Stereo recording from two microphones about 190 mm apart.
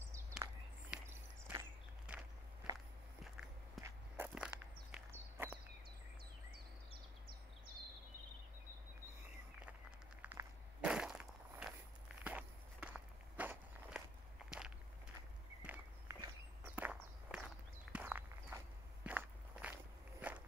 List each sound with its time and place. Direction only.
0.4 s walk: 10° right (ahead or behind)
2.7 s walk: 20° right (ahead or behind)
3.8 s biting: 10° right (ahead or behind)
4.9 s walk: 10° right (ahead or behind)
9.7 s a sound: 5° right (ahead or behind)
12.2 s walk: 5° right (ahead or behind)